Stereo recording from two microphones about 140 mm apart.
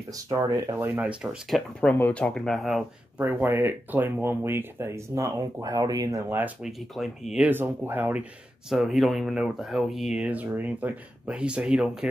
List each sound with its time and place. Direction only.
0.3 s speech: 25° right (ahead or behind)
1.5 s speech: 10° left (ahead or behind)
3.2 s speech: 15° right (ahead or behind)
6.4 s speech: 5° right (ahead or behind)